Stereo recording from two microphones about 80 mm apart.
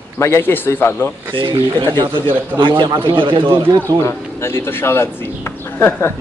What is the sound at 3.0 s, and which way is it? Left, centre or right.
Speech, right.